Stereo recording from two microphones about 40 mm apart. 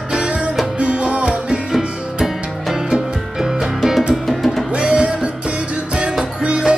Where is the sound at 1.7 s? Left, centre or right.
Centre.